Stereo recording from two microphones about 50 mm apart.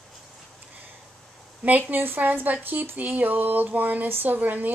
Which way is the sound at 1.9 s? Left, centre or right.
Right.